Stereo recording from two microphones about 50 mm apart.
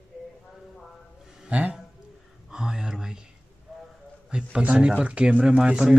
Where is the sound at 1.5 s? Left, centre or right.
Right.